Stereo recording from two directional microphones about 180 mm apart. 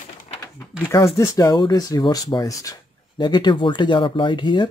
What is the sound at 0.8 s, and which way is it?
Speech, 15° left (ahead or behind).